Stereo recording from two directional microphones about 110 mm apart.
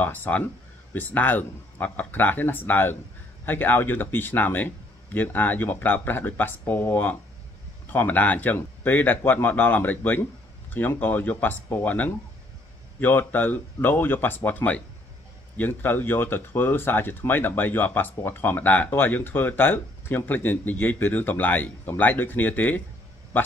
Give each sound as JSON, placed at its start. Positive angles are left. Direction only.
{"t": 0.0, "sound": "speech", "side_deg": 15}